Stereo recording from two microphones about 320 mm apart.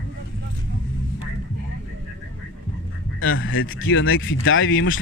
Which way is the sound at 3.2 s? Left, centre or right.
Left.